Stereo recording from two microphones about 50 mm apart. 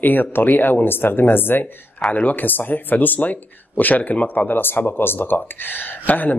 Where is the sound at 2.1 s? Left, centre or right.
Left.